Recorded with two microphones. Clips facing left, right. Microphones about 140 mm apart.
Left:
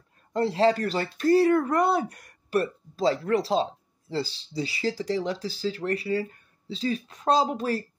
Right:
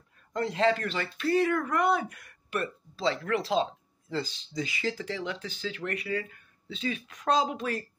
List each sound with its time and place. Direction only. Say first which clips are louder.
0.3 s speech: left 4 dB; 30° left (ahead or behind)